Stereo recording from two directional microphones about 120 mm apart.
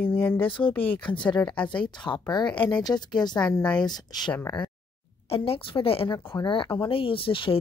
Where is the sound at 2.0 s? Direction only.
40° left (ahead or behind).